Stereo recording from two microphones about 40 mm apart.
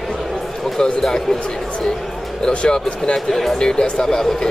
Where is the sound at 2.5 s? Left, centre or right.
Left.